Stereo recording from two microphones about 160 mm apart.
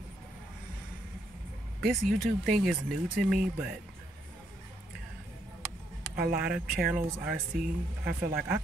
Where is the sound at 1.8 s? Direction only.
Centre (ahead or behind).